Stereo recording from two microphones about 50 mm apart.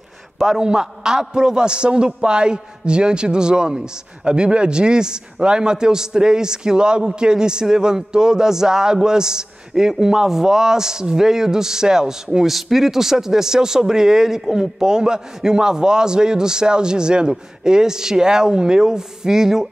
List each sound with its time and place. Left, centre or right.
0.5 s speech: centre